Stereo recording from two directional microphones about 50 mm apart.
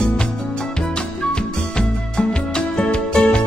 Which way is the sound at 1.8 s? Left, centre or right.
Centre.